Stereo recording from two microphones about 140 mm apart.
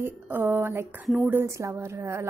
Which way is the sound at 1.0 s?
Centre (ahead or behind).